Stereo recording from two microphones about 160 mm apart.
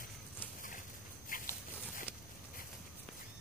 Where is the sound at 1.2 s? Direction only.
60° left (ahead or behind).